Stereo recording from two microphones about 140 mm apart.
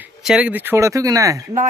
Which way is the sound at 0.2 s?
5° right (ahead or behind).